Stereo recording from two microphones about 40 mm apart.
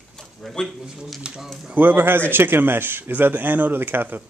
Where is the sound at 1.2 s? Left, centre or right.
Right.